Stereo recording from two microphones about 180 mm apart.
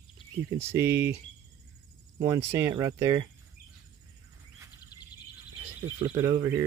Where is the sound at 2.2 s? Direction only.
15° right (ahead or behind).